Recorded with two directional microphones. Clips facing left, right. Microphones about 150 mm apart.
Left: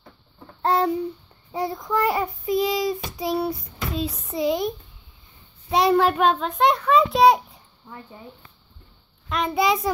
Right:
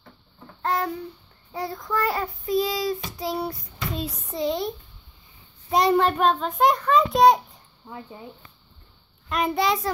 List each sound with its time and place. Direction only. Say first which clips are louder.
0.6 s a sound: left 5 dB; 30° left (ahead or behind)
1.5 s child singing: left 3 dB; 20° left (ahead or behind)
3.4 s child singing: left 3 dB; centre (ahead or behind)
4.4 s child singing: left 3 dB; 10° left (ahead or behind)
5.7 s a child's voice: left 1 dB; 5° left (ahead or behind)
9.5 s child singing: left 3 dB; 10° left (ahead or behind)